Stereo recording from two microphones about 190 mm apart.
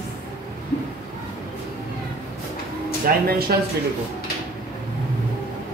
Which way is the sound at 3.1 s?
50° right (ahead or behind).